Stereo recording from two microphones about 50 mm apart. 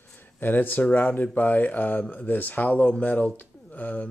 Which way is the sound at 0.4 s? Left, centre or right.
Left.